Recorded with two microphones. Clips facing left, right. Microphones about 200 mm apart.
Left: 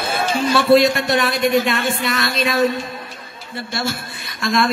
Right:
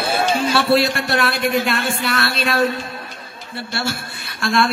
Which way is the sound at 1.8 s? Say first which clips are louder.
Left 1 dB; 35° right (ahead or behind).